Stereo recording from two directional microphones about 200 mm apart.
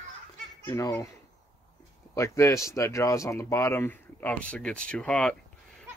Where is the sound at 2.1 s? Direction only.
15° left (ahead or behind).